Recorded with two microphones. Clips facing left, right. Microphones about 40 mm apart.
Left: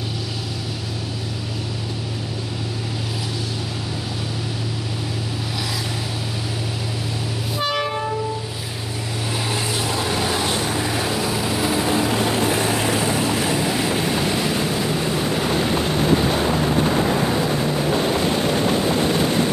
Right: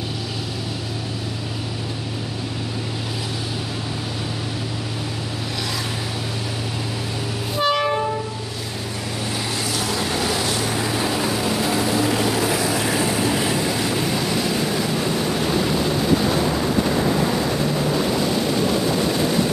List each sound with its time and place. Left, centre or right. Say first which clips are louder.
7.5 s train: right 4 dB; centre
12.4 s vehicle: left 1 dB; left